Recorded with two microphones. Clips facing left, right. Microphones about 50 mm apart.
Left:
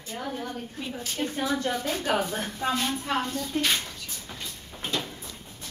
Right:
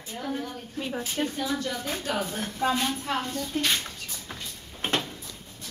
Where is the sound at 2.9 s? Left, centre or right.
Centre.